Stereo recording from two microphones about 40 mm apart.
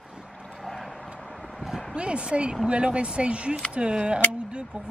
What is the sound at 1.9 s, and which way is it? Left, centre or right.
Speech, right.